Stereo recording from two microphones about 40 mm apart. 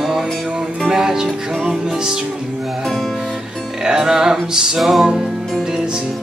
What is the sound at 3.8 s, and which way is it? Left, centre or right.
Music, centre.